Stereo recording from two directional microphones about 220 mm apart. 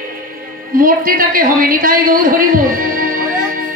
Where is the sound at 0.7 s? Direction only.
40° right (ahead or behind).